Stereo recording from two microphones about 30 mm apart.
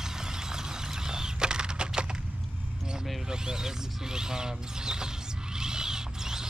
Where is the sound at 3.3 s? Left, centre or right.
Right.